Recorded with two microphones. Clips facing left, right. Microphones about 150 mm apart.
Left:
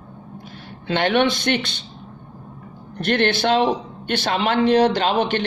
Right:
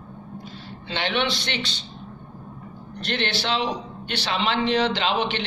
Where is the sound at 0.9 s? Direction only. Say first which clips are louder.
Left 7 dB; 50° left (ahead or behind).